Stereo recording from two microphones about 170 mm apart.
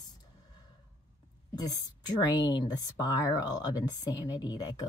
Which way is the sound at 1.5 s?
20° left (ahead or behind).